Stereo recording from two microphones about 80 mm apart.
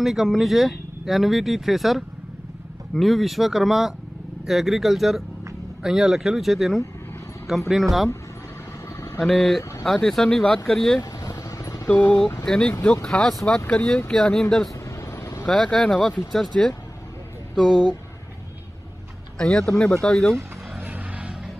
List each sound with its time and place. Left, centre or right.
0.0 s speech: centre
9.2 s speech: centre
11.0 s vehicle: left
12.4 s speech: centre
14.9 s vehicle: left
15.4 s speech: centre
19.3 s speech: centre
20.8 s vehicle: right